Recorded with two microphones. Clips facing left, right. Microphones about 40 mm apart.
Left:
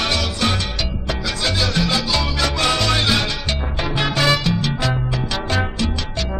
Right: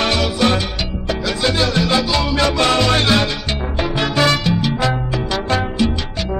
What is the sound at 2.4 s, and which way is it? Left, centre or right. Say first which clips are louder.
Music: right 4 dB; centre.